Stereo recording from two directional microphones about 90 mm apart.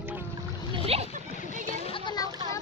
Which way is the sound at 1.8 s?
75° left (ahead or behind).